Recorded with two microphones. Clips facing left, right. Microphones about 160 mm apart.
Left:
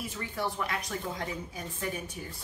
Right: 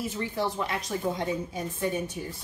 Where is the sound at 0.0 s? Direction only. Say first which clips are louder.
Right 5 dB; 25° right (ahead or behind).